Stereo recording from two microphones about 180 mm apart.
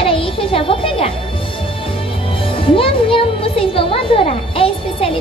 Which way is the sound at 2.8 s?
30° left (ahead or behind).